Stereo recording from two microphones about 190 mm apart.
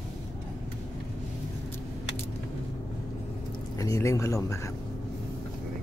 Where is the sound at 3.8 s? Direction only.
15° left (ahead or behind).